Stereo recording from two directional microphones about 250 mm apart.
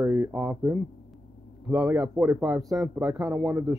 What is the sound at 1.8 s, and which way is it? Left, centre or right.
Speech, centre.